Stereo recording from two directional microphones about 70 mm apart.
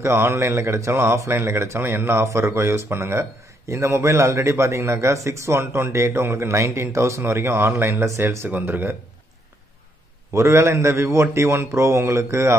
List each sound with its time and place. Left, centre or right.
0.0 s speech: right
8.0 s speech: right
8.5 s speech: right
10.3 s speech: right